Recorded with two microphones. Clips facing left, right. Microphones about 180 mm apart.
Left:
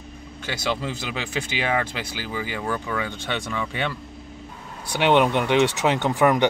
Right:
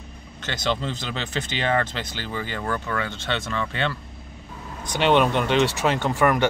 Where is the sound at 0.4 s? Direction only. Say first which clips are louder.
Right 1 dB; 10° left (ahead or behind).